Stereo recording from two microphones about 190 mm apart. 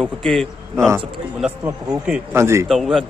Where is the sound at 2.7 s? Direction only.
Centre (ahead or behind).